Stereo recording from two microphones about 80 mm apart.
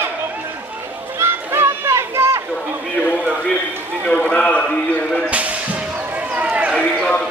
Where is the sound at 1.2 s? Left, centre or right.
Right.